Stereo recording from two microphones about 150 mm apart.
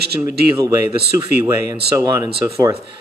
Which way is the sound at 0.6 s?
20° right (ahead or behind).